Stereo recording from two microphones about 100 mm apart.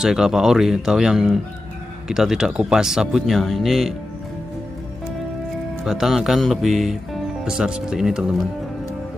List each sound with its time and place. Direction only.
0.0 s speech: 5° right (ahead or behind)
5.9 s speech: 5° right (ahead or behind)